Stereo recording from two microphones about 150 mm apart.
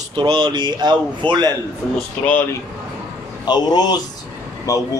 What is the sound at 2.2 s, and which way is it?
Speech, 15° left (ahead or behind).